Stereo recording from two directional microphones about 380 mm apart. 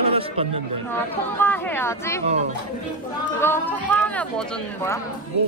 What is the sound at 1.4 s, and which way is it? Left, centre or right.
Speech, centre.